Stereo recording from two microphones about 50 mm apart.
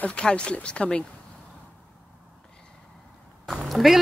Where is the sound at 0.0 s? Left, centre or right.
Centre.